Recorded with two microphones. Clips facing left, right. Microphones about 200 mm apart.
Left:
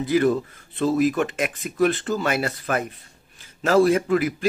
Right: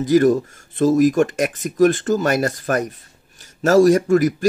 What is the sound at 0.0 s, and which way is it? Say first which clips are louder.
Speech: right 5 dB; 45° right (ahead or behind).